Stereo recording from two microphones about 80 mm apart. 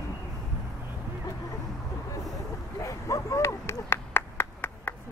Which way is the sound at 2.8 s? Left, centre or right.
Left.